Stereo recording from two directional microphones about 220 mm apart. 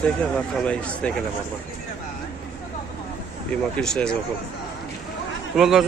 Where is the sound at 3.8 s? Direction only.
5° left (ahead or behind).